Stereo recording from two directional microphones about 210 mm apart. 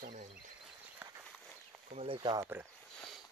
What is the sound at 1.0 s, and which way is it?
Walk, 10° right (ahead or behind).